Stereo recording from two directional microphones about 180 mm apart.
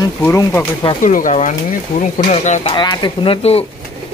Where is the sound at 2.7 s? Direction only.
25° left (ahead or behind).